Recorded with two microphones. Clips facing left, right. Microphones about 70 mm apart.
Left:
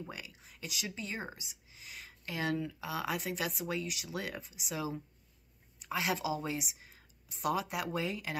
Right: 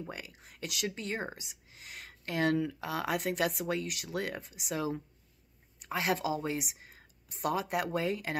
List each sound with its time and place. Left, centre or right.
0.1 s speech: right